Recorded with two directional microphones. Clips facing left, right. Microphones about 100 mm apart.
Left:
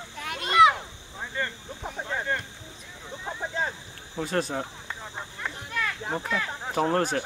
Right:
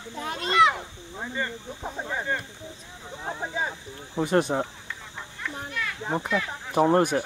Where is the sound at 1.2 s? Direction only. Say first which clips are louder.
Right 1 dB; 10° right (ahead or behind).